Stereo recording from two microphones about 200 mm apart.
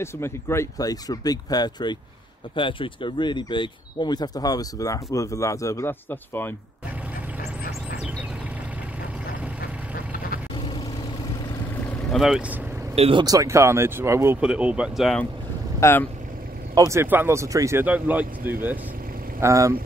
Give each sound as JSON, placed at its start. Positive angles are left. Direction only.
{"t": 0.0, "sound": "speech", "side_deg": 15}
{"t": 10.5, "sound": "vehicle", "side_deg": 25}
{"t": 12.1, "sound": "speech", "side_deg": 0}
{"t": 12.9, "sound": "speech", "side_deg": -25}
{"t": 15.8, "sound": "speech", "side_deg": 10}
{"t": 16.7, "sound": "speech", "side_deg": -15}
{"t": 19.4, "sound": "speech", "side_deg": -15}